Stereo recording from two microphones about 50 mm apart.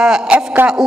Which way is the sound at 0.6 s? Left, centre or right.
Right.